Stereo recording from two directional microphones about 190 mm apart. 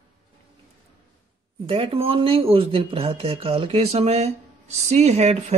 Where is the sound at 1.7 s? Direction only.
30° right (ahead or behind).